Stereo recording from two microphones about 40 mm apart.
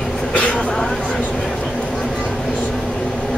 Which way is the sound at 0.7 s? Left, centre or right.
Centre.